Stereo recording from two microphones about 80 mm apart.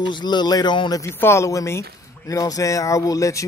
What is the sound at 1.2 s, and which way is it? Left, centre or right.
Speech, left.